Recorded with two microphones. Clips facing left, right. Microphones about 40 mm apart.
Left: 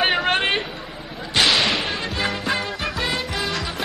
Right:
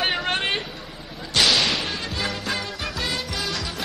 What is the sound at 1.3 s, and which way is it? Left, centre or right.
Music, centre.